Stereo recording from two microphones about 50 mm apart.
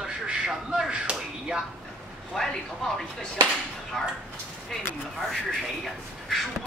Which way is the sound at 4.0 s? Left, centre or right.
Centre.